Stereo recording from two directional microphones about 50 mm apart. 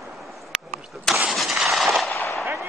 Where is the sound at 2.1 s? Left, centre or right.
Left.